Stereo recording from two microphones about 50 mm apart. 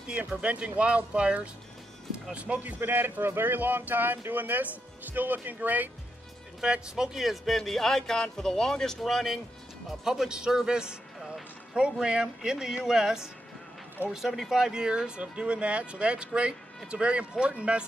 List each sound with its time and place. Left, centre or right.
0.1 s speech: right
2.8 s speech: right
6.6 s speech: centre
9.0 s a man's voice: centre; by 17.8 s right